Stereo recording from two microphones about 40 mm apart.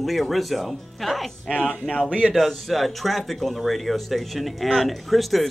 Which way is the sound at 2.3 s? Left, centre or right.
Centre.